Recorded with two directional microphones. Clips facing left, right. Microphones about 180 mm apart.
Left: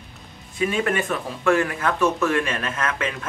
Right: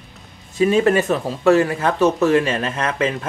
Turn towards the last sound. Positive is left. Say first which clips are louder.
# right 5 dB
turn(degrees=-25)  # may be behind; listen again after turning